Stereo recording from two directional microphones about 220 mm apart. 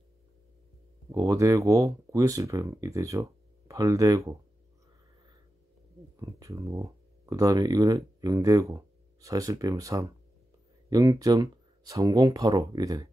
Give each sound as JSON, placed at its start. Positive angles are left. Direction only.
{"t": 1.1, "sound": "speech", "side_deg": -15}
{"t": 6.1, "sound": "speech", "side_deg": -15}